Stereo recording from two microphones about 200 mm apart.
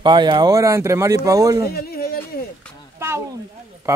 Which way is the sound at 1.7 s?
50° left (ahead or behind).